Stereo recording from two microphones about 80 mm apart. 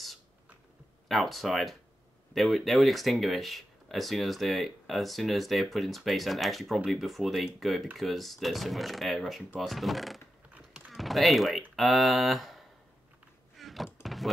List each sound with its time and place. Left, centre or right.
1.0 s speech: centre
10.7 s typing: centre
11.7 s speech: centre
13.6 s door: centre
14.0 s a sound: centre